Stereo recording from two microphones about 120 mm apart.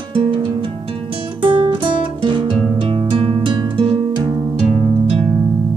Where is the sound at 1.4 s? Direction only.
45° right (ahead or behind).